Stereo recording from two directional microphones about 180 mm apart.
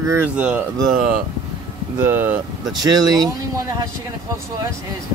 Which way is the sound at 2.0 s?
10° right (ahead or behind).